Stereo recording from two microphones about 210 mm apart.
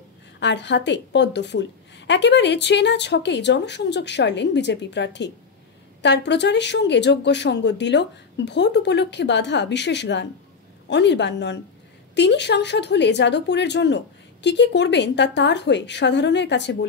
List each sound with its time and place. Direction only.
0.4 s a woman's voice: 55° left (ahead or behind)